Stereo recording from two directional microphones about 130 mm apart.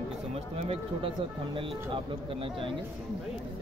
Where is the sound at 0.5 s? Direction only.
45° right (ahead or behind).